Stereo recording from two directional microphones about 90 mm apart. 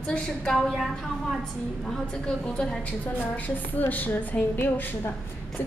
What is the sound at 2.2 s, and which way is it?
A woman's voice, 10° left (ahead or behind).